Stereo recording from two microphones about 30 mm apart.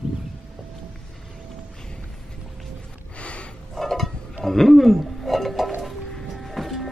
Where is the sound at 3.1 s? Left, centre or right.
Left.